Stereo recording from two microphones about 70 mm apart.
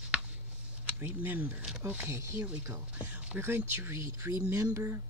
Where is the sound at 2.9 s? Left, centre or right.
Right.